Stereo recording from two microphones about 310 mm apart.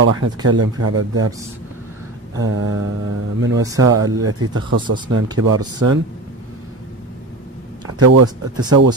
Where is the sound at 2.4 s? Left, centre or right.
Right.